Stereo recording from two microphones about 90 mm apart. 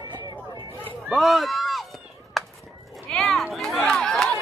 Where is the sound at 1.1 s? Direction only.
Centre (ahead or behind).